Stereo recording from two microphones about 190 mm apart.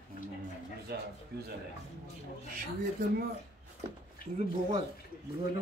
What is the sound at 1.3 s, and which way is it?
Speech, 55° right (ahead or behind).